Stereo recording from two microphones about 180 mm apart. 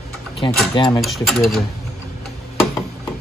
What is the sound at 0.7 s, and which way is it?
Speech, 25° left (ahead or behind).